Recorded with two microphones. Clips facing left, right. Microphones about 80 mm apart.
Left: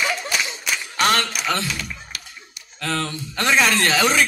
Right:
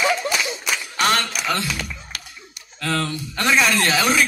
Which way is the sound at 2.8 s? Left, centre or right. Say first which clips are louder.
Right 2 dB; left.